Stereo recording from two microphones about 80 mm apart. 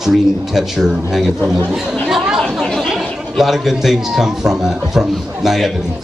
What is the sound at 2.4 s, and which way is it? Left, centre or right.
A man's voice, centre.